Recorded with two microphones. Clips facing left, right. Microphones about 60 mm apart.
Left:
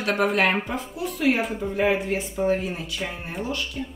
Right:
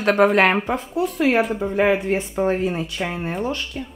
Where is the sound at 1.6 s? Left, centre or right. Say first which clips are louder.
Right 4 dB; right.